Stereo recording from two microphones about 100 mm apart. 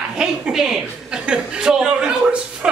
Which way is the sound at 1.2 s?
10° right (ahead or behind).